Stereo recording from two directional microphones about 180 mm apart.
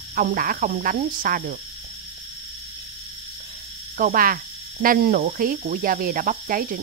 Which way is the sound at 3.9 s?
50° right (ahead or behind).